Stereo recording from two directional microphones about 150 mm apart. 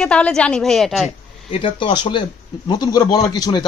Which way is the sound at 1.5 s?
35° left (ahead or behind).